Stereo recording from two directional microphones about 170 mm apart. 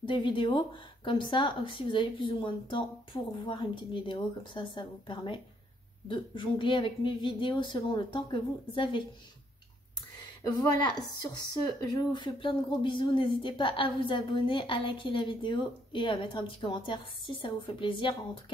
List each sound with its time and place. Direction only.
0.0 s speech: 30° left (ahead or behind)
10.4 s speech: 25° left (ahead or behind)